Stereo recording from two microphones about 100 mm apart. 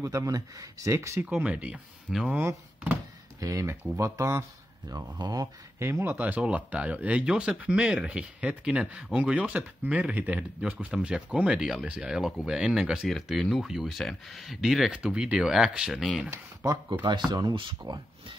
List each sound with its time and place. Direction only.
0.0 s speech: 35° right (ahead or behind)
1.2 s speech: 15° right (ahead or behind)
2.3 s speech: 20° right (ahead or behind)
3.3 s speech: 35° right (ahead or behind)
5.8 s speech: 25° right (ahead or behind); by 16.1 s 5° right (ahead or behind)
16.3 s speech: 25° right (ahead or behind)
17.3 s speech: 45° right (ahead or behind)